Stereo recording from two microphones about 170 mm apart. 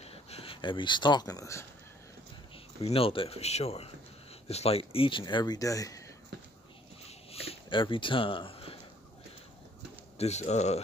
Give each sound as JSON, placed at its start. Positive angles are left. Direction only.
{"t": 0.0, "sound": "speech", "side_deg": 35}
{"t": 2.5, "sound": "speech", "side_deg": 35}
{"t": 7.1, "sound": "a sound", "side_deg": 35}
{"t": 10.1, "sound": "speech", "side_deg": 40}